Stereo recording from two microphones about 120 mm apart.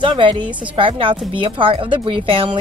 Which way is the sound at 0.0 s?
40° right (ahead or behind).